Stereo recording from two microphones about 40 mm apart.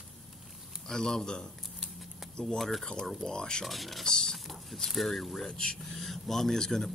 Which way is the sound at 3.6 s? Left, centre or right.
Centre.